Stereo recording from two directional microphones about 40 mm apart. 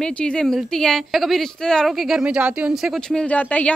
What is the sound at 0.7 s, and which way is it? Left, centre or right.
Speech, centre.